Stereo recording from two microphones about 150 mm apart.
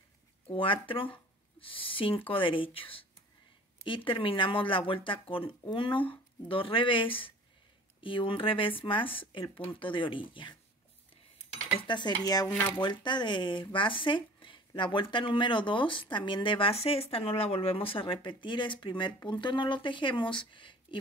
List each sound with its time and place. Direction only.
0.5 s speech: 35° left (ahead or behind)
11.9 s speech: 30° left (ahead or behind)
12.4 s speech: 15° left (ahead or behind)
12.7 s speech: 30° left (ahead or behind)